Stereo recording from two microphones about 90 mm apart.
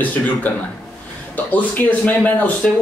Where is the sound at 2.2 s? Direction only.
15° left (ahead or behind).